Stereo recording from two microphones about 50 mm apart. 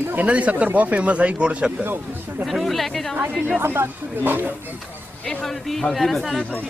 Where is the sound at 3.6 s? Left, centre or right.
Right.